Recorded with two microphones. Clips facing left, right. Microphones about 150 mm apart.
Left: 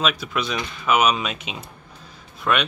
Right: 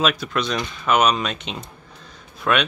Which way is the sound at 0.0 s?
Centre (ahead or behind).